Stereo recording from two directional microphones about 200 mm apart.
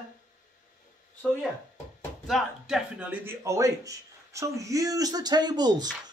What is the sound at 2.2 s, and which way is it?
Speech, centre (ahead or behind).